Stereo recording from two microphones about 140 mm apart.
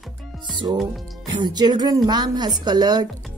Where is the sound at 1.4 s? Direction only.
30° right (ahead or behind).